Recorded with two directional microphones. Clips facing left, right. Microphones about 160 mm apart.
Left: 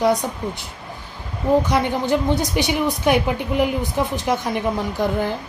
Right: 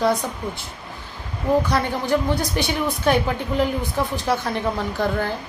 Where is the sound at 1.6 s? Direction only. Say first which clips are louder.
Left 2 dB; 20° left (ahead or behind).